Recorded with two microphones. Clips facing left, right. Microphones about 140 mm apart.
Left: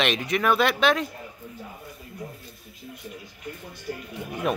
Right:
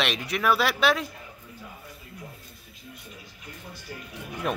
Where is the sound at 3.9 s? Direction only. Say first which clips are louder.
Left 8 dB; 55° left (ahead or behind).